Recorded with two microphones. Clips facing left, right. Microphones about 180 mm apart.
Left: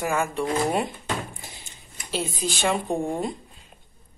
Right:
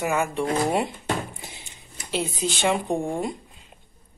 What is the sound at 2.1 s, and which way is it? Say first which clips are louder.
Speech: right 2 dB; 20° right (ahead or behind).